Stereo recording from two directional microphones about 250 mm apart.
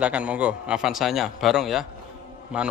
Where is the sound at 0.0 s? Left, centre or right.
Centre.